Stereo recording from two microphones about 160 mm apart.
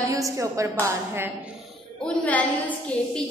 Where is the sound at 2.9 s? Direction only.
10° left (ahead or behind).